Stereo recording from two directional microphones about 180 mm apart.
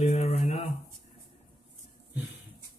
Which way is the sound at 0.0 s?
35° left (ahead or behind).